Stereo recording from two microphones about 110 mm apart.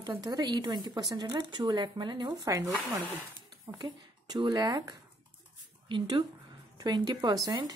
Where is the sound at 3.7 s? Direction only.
40° right (ahead or behind).